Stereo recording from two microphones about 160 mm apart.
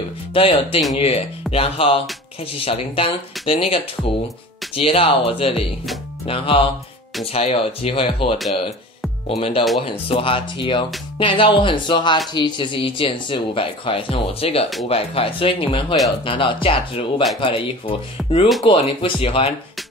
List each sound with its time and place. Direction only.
0.3 s speech: 35° left (ahead or behind)